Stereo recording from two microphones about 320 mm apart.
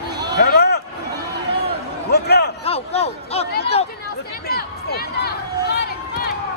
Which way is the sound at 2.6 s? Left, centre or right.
Centre.